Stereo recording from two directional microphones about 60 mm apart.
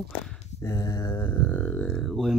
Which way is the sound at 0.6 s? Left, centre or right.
Left.